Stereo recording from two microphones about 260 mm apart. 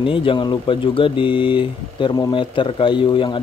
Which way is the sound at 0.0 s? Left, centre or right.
Centre.